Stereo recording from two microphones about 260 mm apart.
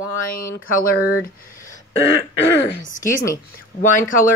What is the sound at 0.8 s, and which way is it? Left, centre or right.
Speech, left.